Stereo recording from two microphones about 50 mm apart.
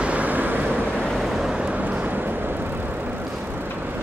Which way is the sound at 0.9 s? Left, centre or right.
Centre.